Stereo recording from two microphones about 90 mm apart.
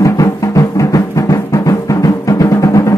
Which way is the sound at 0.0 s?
40° left (ahead or behind).